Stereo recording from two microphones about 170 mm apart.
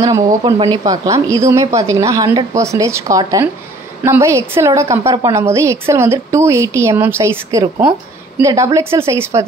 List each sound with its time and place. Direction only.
0.0 s a woman's voice: 20° right (ahead or behind)